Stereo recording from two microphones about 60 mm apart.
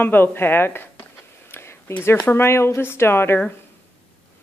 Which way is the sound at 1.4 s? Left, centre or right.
Left.